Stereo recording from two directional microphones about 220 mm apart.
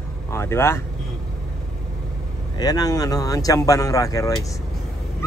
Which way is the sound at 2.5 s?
15° left (ahead or behind).